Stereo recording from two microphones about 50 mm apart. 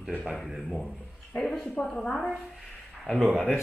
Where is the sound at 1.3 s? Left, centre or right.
Centre.